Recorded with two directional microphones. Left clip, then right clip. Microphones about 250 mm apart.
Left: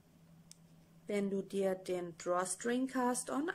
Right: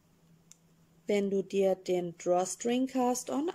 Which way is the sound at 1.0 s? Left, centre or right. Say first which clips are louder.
Right 8 dB; centre.